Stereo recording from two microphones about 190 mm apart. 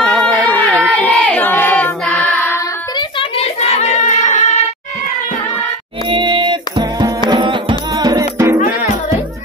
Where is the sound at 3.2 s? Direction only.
30° left (ahead or behind).